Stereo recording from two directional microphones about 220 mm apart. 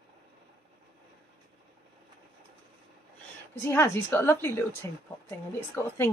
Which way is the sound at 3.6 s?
10° left (ahead or behind).